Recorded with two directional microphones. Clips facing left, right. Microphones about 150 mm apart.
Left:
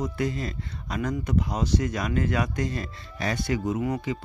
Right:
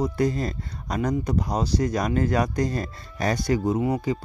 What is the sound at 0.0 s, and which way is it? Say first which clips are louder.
Speech: right 5 dB; 35° right (ahead or behind).